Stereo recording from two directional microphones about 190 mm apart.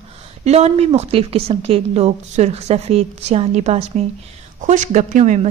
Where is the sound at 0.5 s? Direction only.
35° right (ahead or behind).